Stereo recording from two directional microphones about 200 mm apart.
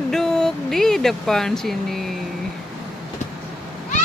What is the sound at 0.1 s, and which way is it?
Speech, 5° left (ahead or behind).